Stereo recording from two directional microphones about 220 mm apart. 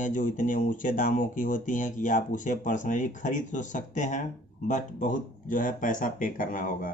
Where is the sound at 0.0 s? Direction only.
35° left (ahead or behind).